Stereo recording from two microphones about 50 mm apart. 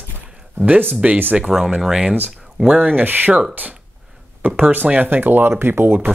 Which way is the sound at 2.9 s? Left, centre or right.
Right.